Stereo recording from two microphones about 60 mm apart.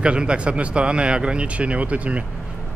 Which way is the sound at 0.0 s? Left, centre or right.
Centre.